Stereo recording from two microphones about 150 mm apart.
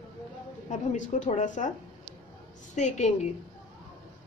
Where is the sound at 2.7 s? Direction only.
50° left (ahead or behind).